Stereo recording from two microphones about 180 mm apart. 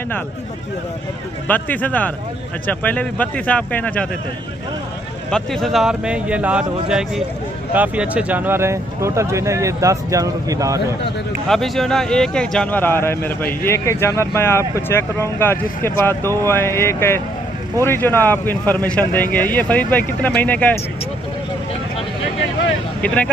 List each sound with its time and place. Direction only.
1.5 s speech: 10° left (ahead or behind)
5.3 s speech: centre (ahead or behind); by 11.0 s 20° right (ahead or behind)
11.4 s speech: centre (ahead or behind)
23.0 s speech: 5° left (ahead or behind)